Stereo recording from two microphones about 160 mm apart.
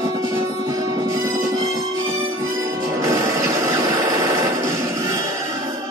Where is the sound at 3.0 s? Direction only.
20° right (ahead or behind).